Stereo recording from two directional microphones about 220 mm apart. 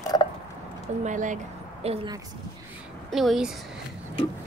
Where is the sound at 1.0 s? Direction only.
35° right (ahead or behind).